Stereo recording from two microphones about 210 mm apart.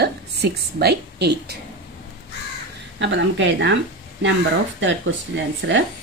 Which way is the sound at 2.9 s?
60° right (ahead or behind).